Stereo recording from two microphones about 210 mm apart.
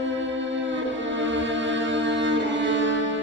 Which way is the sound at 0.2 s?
60° right (ahead or behind).